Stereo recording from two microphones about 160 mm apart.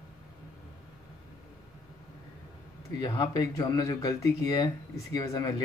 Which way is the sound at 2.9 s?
25° left (ahead or behind).